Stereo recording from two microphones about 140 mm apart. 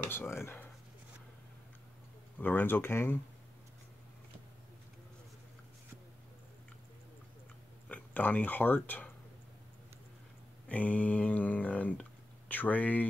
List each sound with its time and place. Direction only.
0.0 s speech: 15° left (ahead or behind)
2.3 s speech: 10° left (ahead or behind)
7.9 s speech: 10° left (ahead or behind)
10.7 s speech: 10° left (ahead or behind)